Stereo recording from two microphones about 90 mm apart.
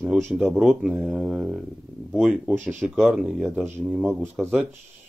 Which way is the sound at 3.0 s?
10° right (ahead or behind).